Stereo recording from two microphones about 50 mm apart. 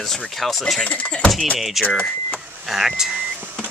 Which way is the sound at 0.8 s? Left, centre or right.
Left.